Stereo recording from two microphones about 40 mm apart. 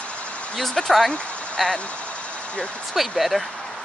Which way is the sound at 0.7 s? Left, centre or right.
Centre.